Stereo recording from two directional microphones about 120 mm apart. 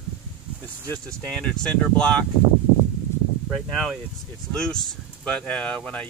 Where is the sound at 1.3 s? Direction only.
5° left (ahead or behind).